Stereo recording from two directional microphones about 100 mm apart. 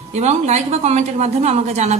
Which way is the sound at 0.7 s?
90° right.